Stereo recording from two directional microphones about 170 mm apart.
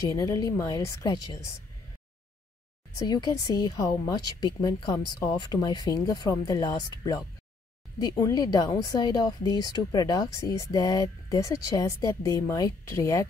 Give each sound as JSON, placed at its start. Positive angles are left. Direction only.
{"t": 0.1, "sound": "a woman's voice", "side_deg": 20}
{"t": 3.0, "sound": "a woman's voice", "side_deg": 25}